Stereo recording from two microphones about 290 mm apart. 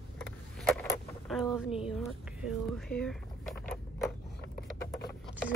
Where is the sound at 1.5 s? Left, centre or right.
Centre.